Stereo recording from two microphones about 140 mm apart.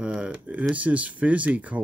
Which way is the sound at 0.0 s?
5° right (ahead or behind).